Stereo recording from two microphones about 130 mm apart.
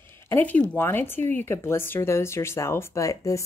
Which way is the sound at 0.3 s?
15° left (ahead or behind).